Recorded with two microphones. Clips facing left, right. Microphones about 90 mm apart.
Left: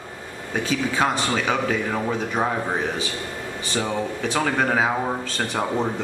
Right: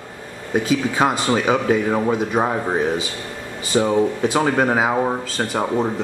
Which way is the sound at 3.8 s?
20° right (ahead or behind).